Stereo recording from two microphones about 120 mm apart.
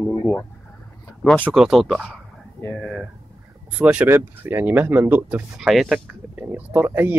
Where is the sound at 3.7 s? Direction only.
10° right (ahead or behind).